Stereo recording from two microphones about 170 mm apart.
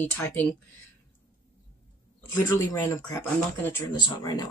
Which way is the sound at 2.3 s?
20° left (ahead or behind).